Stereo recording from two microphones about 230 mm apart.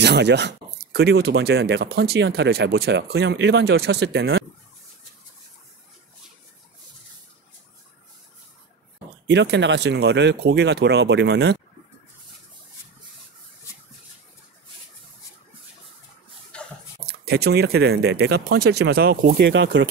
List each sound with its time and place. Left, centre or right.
0.0 s speech: right
9.3 s speech: right
16.5 s a sound: centre
17.0 s speech: right
19.5 s speech: right